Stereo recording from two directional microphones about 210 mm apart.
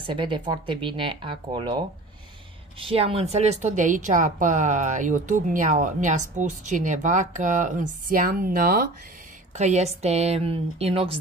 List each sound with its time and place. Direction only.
0.0 s speech: 25° right (ahead or behind)
2.8 s a woman's voice: 25° right (ahead or behind); by 8.8 s 45° right (ahead or behind)
9.6 s speech: 30° right (ahead or behind)